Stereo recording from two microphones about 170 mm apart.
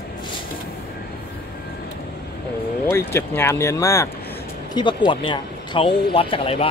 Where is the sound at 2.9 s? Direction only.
15° left (ahead or behind).